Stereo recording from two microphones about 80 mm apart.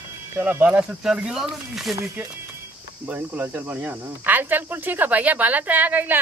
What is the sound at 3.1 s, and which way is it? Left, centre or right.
Speech, right.